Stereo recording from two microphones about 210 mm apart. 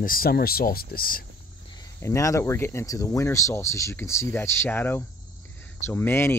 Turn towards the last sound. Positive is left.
turn(degrees=10)  # may be behind; listen again after turning